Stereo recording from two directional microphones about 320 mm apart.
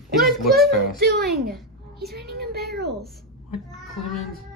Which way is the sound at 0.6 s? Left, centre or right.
Left.